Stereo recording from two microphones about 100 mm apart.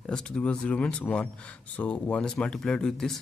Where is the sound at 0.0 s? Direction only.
5° left (ahead or behind).